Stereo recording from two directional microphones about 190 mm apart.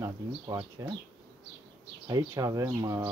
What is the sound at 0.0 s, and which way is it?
Speech, 20° right (ahead or behind).